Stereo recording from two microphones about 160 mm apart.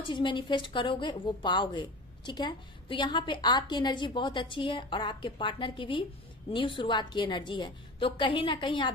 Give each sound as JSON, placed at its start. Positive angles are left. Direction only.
{"t": 0.1, "sound": "a woman's voice", "side_deg": 30}